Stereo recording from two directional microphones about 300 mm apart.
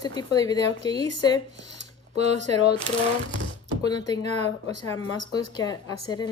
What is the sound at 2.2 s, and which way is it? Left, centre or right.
Speech, right.